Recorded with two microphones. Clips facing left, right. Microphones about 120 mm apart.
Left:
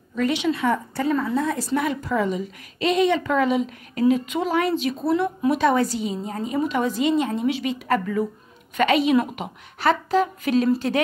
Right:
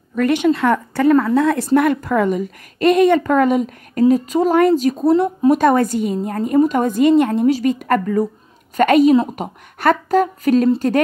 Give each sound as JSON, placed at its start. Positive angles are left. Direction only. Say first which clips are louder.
{"t": 0.1, "sound": "a woman's voice", "louder": "right 7 dB", "side_deg": -55}
{"t": 1.8, "sound": "a woman's voice", "louder": "right 7 dB", "side_deg": -60}
{"t": 7.4, "sound": "a woman's voice", "louder": "right 7 dB", "side_deg": -45}
{"t": 9.1, "sound": "a woman's voice", "louder": "right 5 dB", "side_deg": -30}
{"t": 9.4, "sound": "a woman's voice", "louder": "right 5 dB", "side_deg": -50}